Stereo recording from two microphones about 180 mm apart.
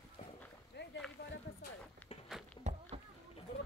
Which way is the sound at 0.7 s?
70° left (ahead or behind).